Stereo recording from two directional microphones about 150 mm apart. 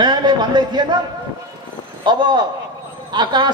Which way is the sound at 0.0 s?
30° right (ahead or behind).